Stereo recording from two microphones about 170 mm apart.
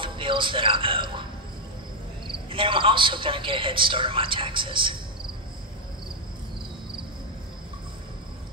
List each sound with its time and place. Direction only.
0.0 s speech: 30° right (ahead or behind)
2.2 s a man's voice: 30° right (ahead or behind)